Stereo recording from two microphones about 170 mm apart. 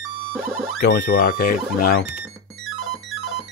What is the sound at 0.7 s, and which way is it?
Speech, 85° left.